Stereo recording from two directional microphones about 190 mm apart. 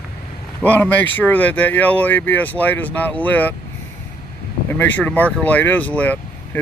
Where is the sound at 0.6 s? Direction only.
10° left (ahead or behind).